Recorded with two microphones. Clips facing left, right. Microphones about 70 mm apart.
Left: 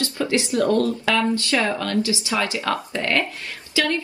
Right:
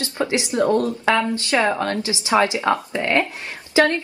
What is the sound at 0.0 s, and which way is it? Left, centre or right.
A woman's voice, right.